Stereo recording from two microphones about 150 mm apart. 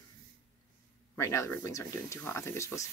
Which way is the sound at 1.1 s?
20° left (ahead or behind).